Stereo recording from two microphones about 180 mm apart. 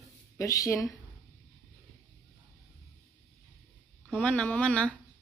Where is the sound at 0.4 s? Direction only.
15° left (ahead or behind).